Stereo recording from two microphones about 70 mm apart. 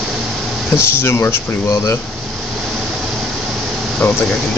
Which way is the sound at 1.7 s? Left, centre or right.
Left.